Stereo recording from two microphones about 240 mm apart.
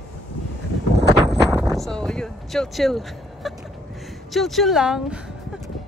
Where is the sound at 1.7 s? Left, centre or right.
Centre.